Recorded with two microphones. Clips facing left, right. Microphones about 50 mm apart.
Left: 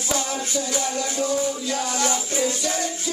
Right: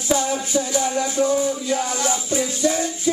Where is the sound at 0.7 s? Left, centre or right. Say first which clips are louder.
Right 5 dB; centre.